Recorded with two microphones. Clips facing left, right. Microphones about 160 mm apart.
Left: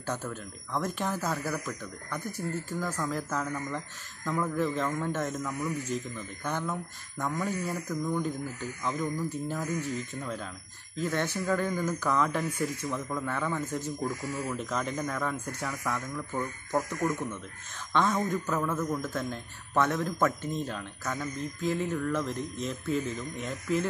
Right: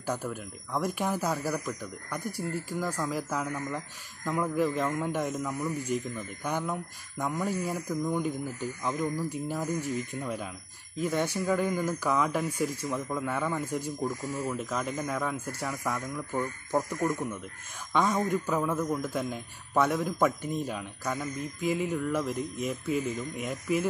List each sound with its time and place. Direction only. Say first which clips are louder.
0.0 s speech: right 2 dB; 10° right (ahead or behind)